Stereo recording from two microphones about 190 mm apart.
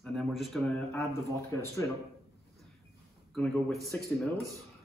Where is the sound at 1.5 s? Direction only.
15° left (ahead or behind).